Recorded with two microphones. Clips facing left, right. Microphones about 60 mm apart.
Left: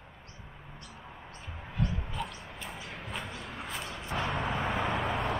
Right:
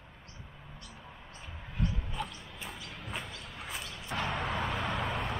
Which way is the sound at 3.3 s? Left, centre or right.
Left.